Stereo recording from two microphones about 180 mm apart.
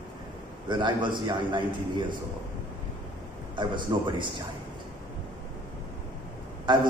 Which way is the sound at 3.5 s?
25° right (ahead or behind).